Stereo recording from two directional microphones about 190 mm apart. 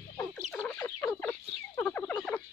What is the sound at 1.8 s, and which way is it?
Frog, 10° left (ahead or behind).